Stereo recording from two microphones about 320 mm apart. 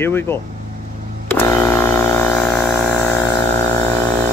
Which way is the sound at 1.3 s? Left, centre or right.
Centre.